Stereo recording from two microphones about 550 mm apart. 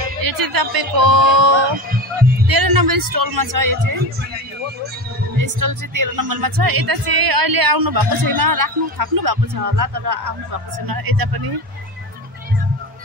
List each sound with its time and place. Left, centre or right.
0.2 s speech: right
5.4 s speech: right